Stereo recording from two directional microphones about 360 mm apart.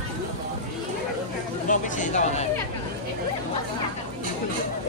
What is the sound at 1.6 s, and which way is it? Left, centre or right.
Speech, left.